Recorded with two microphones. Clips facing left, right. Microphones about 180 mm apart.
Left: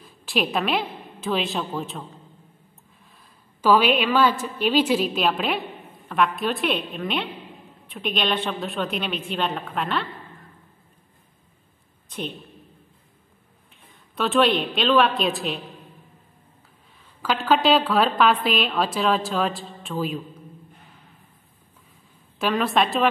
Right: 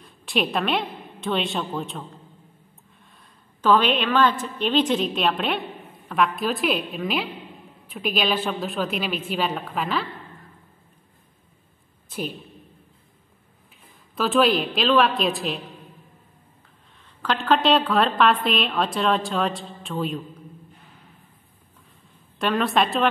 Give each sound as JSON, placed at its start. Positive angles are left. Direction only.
{"t": 0.0, "sound": "a woman's voice", "side_deg": 0}
{"t": 3.2, "sound": "a woman's voice", "side_deg": 10}
{"t": 12.1, "sound": "a woman's voice", "side_deg": -5}
{"t": 14.1, "sound": "a woman's voice", "side_deg": 0}
{"t": 17.0, "sound": "a woman's voice", "side_deg": 5}
{"t": 22.4, "sound": "a woman's voice", "side_deg": 0}